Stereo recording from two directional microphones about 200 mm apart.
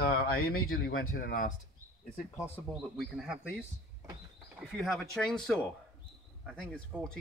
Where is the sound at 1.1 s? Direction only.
45° left (ahead or behind).